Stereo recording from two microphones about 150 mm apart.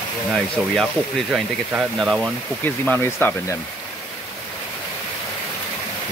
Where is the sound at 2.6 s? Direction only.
15° left (ahead or behind).